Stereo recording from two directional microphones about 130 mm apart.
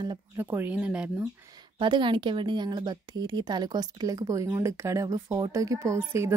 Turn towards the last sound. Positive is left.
turn(degrees=-20)  # may be behind; listen again after turning